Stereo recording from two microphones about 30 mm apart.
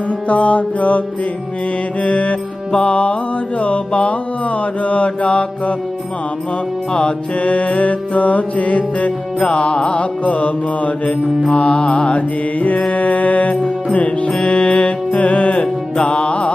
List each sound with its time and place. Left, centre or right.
0.3 s music: left
2.0 s music: left
6.9 s music: left
7.4 s music: left
9.4 s music: left
10.2 s music: left
11.5 s music: left
14.2 s music: left
15.5 s music: left